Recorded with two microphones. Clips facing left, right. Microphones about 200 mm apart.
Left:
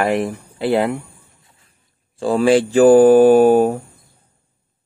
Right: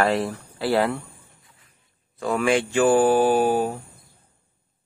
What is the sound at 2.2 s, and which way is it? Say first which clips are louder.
Mantra: left 7 dB; 30° left (ahead or behind).